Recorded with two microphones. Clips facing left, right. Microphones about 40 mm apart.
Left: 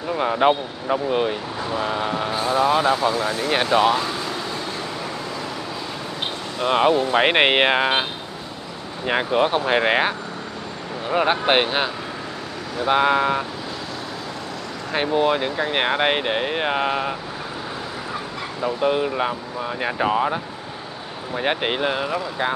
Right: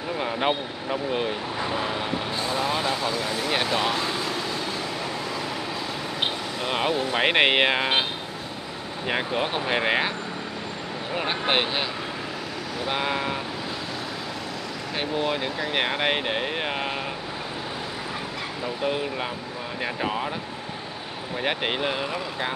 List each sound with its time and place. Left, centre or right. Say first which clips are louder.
0.1 s speech: left 7 dB; centre
1.6 s speech: left 2 dB; centre
1.9 s speech: left 4 dB; centre
4.0 s vehicle: left 1 dB; centre
6.6 s speech: left 8 dB; centre
9.0 s speech: left 6 dB; centre
15.0 s speech: left 7 dB; centre
18.6 s speech: left 7 dB; centre
21.4 s speech: left 4 dB; centre